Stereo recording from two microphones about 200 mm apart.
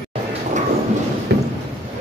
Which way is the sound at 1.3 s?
55° right (ahead or behind).